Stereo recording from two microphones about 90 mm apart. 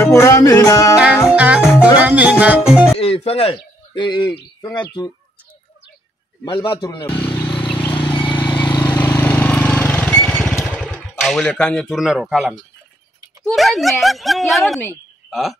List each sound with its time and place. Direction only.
0.0 s music: 30° left (ahead or behind)
0.9 s music: 15° right (ahead or behind)
3.0 s speech: 90° left
4.0 s speech: 55° left (ahead or behind)
6.4 s speech: 65° left (ahead or behind)
7.4 s vehicle: 65° left (ahead or behind)
8.6 s vehicle: 20° left (ahead or behind)
9.2 s lawn mower: 20° left (ahead or behind)
10.8 s a sound: 10° left (ahead or behind)
11.4 s speech: 10° left (ahead or behind)
12.0 s a woman's voice: 5° right (ahead or behind)